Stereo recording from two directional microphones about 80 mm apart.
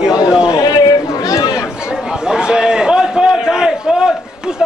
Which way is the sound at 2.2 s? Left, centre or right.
Centre.